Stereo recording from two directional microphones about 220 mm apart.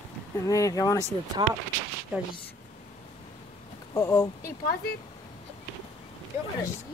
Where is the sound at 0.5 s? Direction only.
15° left (ahead or behind).